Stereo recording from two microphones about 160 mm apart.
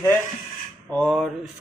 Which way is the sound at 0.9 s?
5° left (ahead or behind).